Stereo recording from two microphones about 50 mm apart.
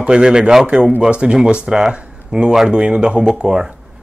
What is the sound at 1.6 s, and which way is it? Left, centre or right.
Speech, centre.